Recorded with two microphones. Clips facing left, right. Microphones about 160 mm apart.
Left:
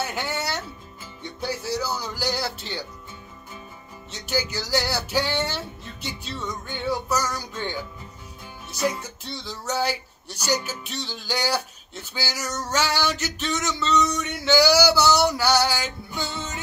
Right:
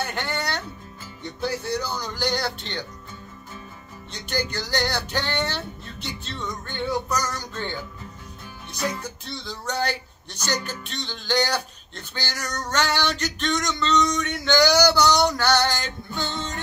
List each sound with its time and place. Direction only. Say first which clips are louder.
0.0 s speech: even; 5° left (ahead or behind)
4.1 s speech: left 1 dB; 5° left (ahead or behind)
9.5 s speech: left 1 dB; 5° left (ahead or behind)